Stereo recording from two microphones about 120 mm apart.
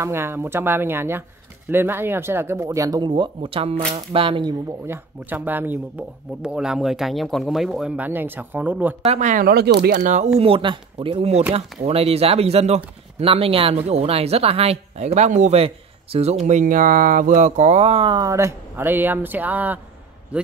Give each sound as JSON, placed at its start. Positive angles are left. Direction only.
{"t": 0.0, "sound": "speech", "side_deg": -20}
{"t": 4.8, "sound": "speech", "side_deg": -15}
{"t": 9.0, "sound": "speech", "side_deg": -80}
{"t": 9.9, "sound": "speech", "side_deg": -90}
{"t": 10.4, "sound": "speech", "side_deg": -45}
{"t": 15.6, "sound": "speech", "side_deg": -55}
{"t": 18.1, "sound": "a man's voice", "side_deg": -25}